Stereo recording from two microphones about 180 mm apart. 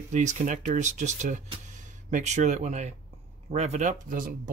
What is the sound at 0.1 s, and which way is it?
Speech, 40° right (ahead or behind).